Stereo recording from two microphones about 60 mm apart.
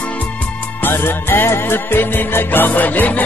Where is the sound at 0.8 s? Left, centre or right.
Left.